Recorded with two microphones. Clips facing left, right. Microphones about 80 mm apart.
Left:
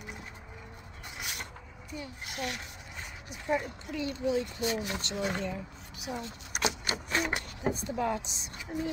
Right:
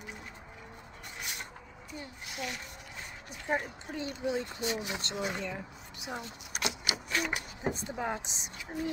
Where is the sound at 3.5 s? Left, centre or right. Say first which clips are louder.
Left 2 dB; right.